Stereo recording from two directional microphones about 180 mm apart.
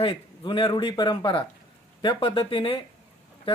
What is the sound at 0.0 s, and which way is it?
Speech, 30° left (ahead or behind).